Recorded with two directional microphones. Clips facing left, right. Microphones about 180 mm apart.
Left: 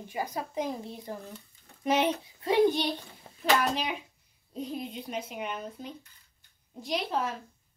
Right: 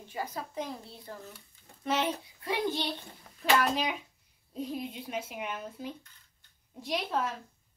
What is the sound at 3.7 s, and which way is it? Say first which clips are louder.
A child's voice: even; centre (ahead or behind).